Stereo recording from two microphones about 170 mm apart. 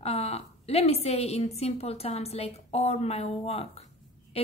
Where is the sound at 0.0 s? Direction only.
35° left (ahead or behind).